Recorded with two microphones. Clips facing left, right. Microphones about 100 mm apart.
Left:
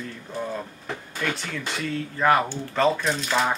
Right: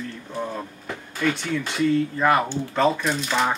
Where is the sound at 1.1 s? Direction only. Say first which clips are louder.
Right 6 dB; centre (ahead or behind).